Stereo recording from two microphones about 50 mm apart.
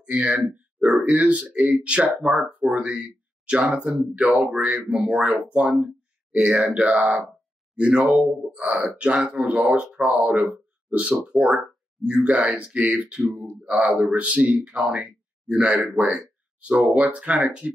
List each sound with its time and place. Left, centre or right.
0.2 s speech: right
14.9 s speech: centre